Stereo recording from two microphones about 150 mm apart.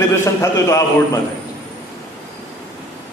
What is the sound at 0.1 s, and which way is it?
Speech, 20° left (ahead or behind).